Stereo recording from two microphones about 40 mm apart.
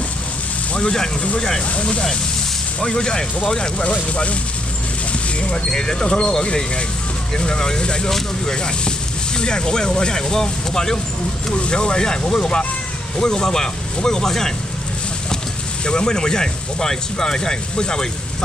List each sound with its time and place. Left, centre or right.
0.7 s speech: centre
1.8 s speech: left
2.8 s speech: centre
3.8 s speech: left
5.7 s speech: centre
11.5 s speech: left
15.8 s speech: left